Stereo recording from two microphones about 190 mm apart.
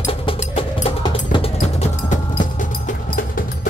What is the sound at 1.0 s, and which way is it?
Music, 25° left (ahead or behind).